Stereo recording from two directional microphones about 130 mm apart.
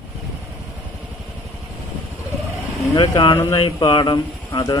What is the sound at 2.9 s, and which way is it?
Speech, 35° left (ahead or behind).